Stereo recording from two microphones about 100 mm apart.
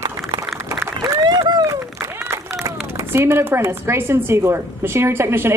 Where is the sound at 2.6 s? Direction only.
25° right (ahead or behind).